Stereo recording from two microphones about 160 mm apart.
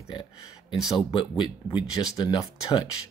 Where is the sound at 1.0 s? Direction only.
30° left (ahead or behind).